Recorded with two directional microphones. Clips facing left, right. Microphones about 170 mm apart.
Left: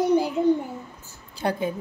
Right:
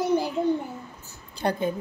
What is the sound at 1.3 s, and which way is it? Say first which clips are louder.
Speech: even; 5° left (ahead or behind).